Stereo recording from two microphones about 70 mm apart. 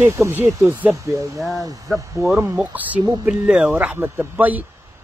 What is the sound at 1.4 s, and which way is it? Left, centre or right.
Speech, centre.